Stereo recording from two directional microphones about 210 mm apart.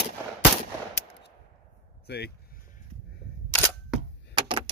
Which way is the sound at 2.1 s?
50° left (ahead or behind).